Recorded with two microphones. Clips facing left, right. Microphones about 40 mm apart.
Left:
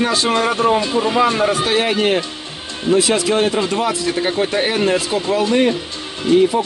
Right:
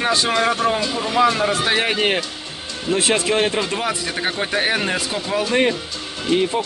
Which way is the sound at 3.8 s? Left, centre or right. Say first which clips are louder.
Left 4 dB; centre.